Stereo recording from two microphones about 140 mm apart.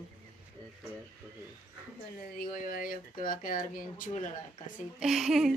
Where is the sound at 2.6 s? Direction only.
90° left.